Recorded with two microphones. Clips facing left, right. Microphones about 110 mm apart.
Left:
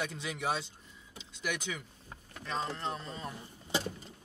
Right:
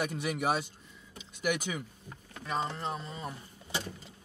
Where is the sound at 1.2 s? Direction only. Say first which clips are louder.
Right 5 dB; 15° right (ahead or behind).